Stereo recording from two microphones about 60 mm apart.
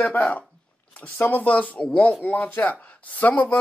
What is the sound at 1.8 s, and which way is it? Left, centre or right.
Speech, centre.